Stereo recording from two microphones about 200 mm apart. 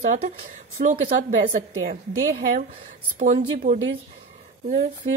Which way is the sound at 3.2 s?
35° right (ahead or behind).